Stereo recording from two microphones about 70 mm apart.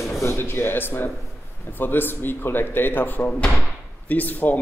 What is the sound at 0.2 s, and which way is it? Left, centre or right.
Speech, left.